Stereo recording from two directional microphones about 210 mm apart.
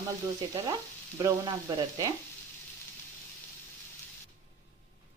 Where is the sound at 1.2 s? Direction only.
20° right (ahead or behind).